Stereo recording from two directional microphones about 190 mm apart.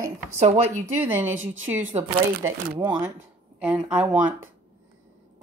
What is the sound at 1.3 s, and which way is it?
Speech, 90° right.